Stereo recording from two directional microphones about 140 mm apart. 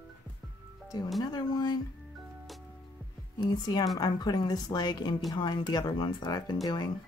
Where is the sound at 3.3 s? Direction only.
30° left (ahead or behind).